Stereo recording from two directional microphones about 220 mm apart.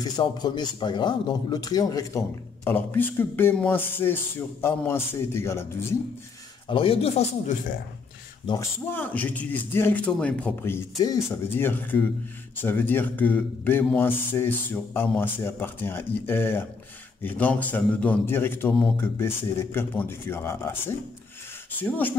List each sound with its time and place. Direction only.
0.0 s speech: 20° left (ahead or behind)
6.7 s speech: 25° left (ahead or behind)
8.5 s speech: 10° left (ahead or behind)